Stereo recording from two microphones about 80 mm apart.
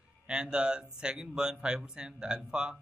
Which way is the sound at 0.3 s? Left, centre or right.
Centre.